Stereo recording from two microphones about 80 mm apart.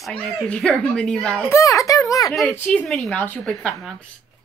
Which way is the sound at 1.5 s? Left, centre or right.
Left.